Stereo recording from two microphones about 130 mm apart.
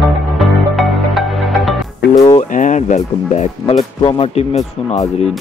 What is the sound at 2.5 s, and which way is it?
Speech, 70° left (ahead or behind).